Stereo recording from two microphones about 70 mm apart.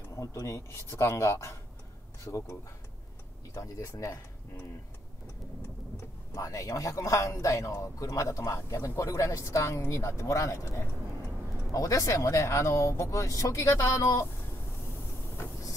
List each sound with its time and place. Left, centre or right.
0.2 s speech: left
3.5 s speech: left
6.3 s speech: left